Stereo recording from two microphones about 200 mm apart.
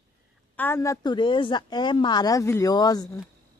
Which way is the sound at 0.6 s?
10° left (ahead or behind).